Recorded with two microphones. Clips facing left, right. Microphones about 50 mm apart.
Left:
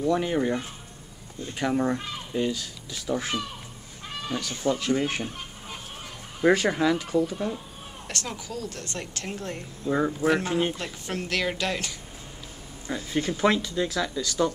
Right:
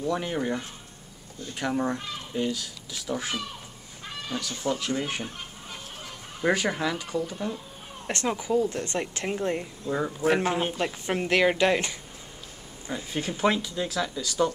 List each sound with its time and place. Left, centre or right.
0.0 s speech: centre
6.5 s speech: centre
8.1 s speech: right
9.8 s speech: centre
10.2 s speech: centre
12.9 s speech: centre